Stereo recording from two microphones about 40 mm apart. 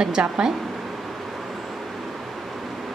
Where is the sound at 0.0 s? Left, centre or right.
Right.